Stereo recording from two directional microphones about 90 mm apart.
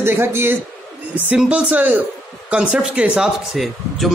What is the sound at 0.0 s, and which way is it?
Speech, 25° right (ahead or behind).